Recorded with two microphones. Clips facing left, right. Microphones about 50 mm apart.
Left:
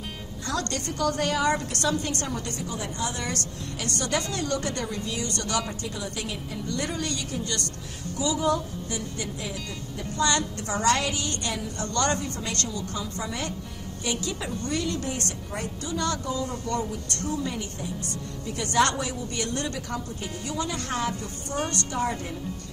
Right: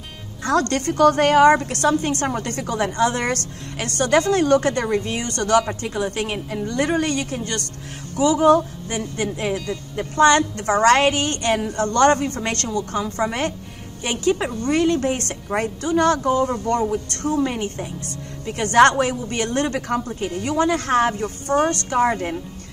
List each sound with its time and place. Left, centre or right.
0.4 s a woman's voice: right
1.5 s a woman's voice: right
11.8 s a woman's voice: right